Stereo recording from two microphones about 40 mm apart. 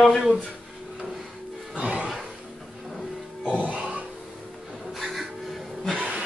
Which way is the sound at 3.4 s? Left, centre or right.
Right.